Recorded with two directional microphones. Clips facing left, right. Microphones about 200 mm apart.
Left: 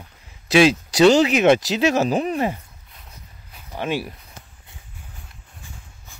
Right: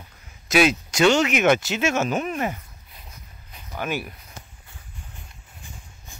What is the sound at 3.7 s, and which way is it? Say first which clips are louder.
Speech: left 3 dB; 30° left (ahead or behind).